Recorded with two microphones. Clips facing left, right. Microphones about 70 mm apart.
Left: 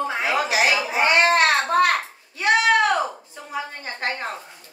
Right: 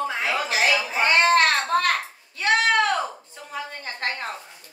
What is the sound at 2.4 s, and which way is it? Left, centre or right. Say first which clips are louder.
Sheep: left 2 dB; centre.